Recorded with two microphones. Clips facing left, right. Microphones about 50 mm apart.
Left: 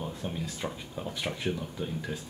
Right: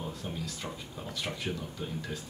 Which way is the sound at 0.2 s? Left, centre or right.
Left.